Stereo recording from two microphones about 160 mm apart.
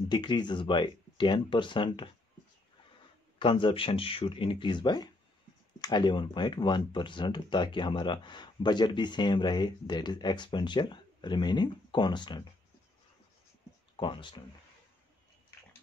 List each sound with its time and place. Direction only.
0.1 s speech: 30° left (ahead or behind)
3.3 s speech: 30° left (ahead or behind)
13.9 s speech: 30° left (ahead or behind)